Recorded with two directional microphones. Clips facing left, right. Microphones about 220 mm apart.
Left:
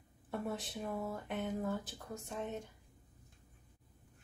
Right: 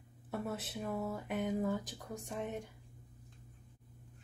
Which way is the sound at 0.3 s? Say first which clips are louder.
Even; 5° right (ahead or behind).